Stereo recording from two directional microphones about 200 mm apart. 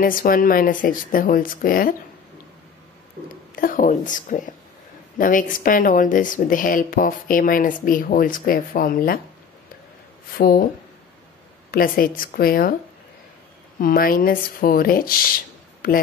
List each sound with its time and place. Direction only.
0.0 s speech: 45° left (ahead or behind)
3.3 s speech: 45° left (ahead or behind)
10.3 s speech: 45° left (ahead or behind)
11.7 s speech: 45° left (ahead or behind)
13.7 s speech: 45° left (ahead or behind)